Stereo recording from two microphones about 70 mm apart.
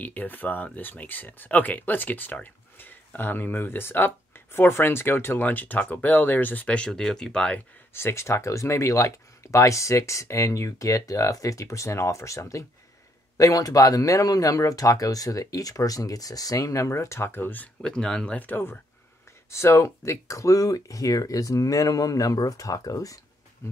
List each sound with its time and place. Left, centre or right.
0.0 s speech: left
7.9 s speech: left
13.4 s speech: left
17.8 s speech: centre
18.4 s speech: left
19.5 s speech: left